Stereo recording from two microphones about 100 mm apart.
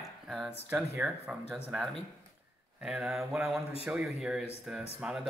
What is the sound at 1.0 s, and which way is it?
Speech, 15° right (ahead or behind).